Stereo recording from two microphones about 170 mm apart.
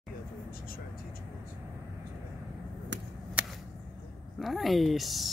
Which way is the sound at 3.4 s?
10° right (ahead or behind).